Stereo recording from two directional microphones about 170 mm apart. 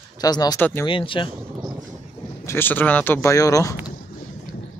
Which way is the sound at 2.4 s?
10° left (ahead or behind).